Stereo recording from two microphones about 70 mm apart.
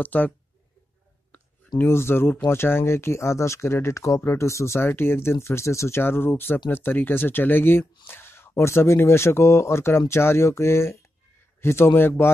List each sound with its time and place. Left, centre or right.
0.0 s speech: left
1.3 s a sound: left
1.8 s speech: left